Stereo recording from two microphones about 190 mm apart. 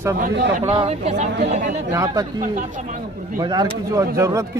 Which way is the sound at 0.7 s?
30° right (ahead or behind).